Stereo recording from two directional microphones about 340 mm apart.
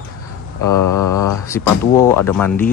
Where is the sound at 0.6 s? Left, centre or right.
Left.